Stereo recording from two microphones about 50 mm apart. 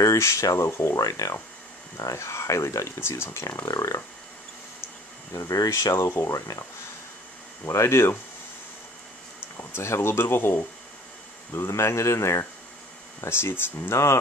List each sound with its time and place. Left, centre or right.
0.0 s speech: left
5.3 s speech: left
7.6 s speech: left
9.8 s speech: left
13.2 s speech: left